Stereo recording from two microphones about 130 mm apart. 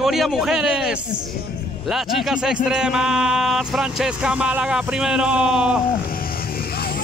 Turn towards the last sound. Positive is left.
turn(degrees=-5)  # may be behind; listen again after turning